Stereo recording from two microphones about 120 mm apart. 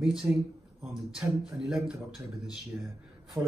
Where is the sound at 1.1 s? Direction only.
5° right (ahead or behind).